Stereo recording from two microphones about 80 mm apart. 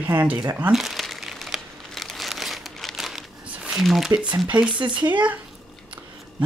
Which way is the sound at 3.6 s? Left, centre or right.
Centre.